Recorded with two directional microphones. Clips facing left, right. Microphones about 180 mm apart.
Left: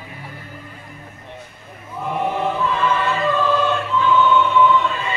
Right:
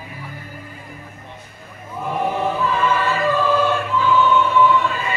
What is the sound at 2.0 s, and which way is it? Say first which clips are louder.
Choir: even; 10° right (ahead or behind).